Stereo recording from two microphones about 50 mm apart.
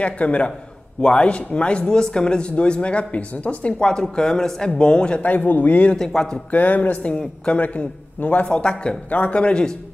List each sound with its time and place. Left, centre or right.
0.0 s speech: left
5.3 s a man's voice: left
5.9 s a man's voice: centre
6.5 s a man's voice: left
8.5 s speech: left